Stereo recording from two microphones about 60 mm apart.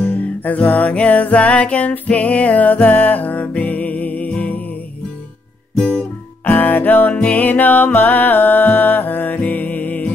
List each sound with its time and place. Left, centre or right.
0.0 s music: left
6.4 s music: left